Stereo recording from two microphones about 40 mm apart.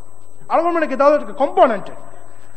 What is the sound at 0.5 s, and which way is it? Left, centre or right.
A man's voice, centre.